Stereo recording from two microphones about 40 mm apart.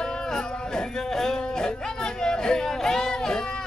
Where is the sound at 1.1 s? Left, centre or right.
Centre.